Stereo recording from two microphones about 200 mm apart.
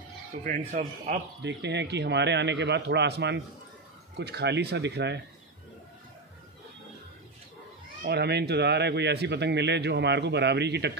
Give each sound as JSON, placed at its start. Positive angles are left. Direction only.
{"t": 0.4, "sound": "speech", "side_deg": -40}
{"t": 1.4, "sound": "a man's voice", "side_deg": -60}
{"t": 8.0, "sound": "a man's voice", "side_deg": -55}